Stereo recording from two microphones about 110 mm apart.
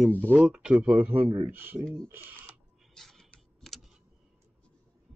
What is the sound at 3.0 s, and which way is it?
Computer keyboard, 5° left (ahead or behind).